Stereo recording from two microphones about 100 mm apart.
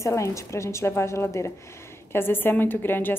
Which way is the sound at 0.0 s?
30° left (ahead or behind).